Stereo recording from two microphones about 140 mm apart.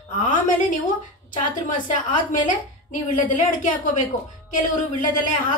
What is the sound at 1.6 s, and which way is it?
A woman's voice, 65° left (ahead or behind).